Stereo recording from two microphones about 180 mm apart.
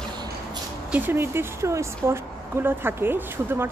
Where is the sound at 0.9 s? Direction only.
10° right (ahead or behind).